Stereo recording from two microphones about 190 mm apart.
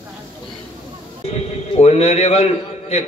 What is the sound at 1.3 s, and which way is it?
A man's voice, 35° left (ahead or behind).